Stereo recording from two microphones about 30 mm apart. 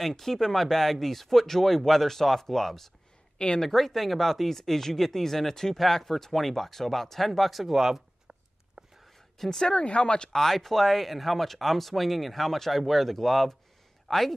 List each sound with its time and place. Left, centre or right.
0.1 s speech: centre
3.3 s speech: left
3.6 s speech: centre
7.6 s speech: centre
8.8 s whispering: right
9.5 s speech: left
9.8 s speech: left
10.3 s speech: centre